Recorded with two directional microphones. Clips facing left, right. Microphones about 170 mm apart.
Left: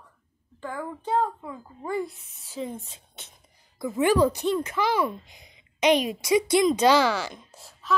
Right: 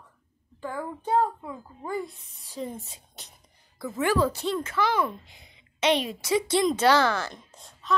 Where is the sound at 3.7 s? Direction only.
15° left (ahead or behind).